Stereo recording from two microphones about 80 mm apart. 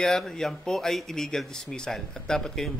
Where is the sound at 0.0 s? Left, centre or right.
Centre.